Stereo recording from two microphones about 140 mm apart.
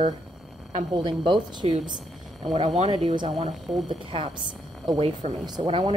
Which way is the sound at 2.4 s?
45° right (ahead or behind).